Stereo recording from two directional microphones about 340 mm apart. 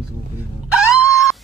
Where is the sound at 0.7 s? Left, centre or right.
Centre.